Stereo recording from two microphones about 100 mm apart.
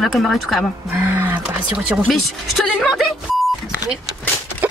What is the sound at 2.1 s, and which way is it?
Speech, centre (ahead or behind).